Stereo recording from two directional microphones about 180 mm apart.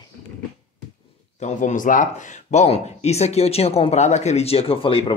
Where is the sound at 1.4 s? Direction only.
45° left (ahead or behind).